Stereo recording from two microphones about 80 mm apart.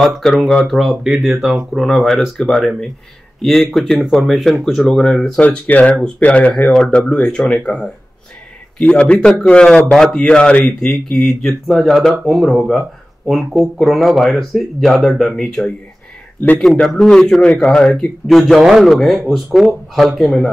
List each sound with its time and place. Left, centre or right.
0.0 s a man's voice: centre
16.7 s a man's voice: centre